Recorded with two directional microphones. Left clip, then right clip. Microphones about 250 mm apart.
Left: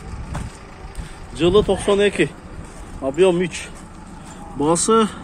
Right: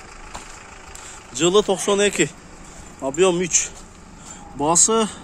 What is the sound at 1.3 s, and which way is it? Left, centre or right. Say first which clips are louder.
Speech: left 1 dB; right.